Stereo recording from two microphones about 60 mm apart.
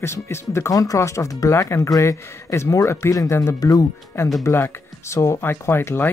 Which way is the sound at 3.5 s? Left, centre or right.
Left.